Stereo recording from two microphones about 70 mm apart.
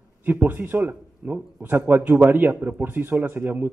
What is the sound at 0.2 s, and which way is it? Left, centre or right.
A man's voice, right.